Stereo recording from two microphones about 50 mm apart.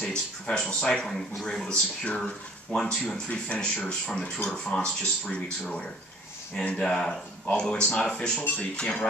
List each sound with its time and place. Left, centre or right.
0.0 s speech: centre
3.4 s speech: left
6.5 s speech: centre